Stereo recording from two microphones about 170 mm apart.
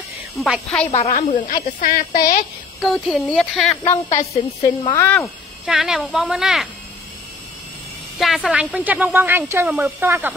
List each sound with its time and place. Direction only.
0.4 s speech: 5° left (ahead or behind)
1.1 s a woman's voice: 50° left (ahead or behind)
2.8 s speech: centre (ahead or behind)
4.3 s a woman's voice: 20° left (ahead or behind)
5.0 s speech: 10° left (ahead or behind)
5.7 s speech: 5° right (ahead or behind)
8.2 s speech: centre (ahead or behind)